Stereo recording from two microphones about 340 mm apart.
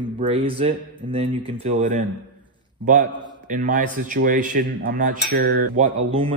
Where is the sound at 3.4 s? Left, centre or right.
Right.